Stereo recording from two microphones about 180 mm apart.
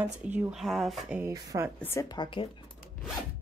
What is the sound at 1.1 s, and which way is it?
Speech, 15° right (ahead or behind).